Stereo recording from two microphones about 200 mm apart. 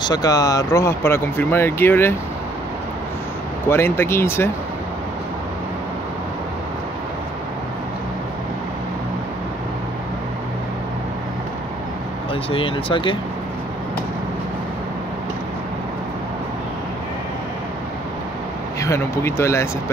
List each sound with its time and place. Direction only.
0.0 s speech: 20° left (ahead or behind)
3.6 s speech: 10° left (ahead or behind)
12.4 s speech: 25° left (ahead or behind)
18.8 s speech: 15° left (ahead or behind)